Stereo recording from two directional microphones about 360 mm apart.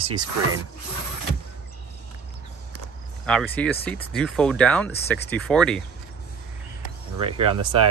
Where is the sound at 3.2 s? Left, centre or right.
Centre.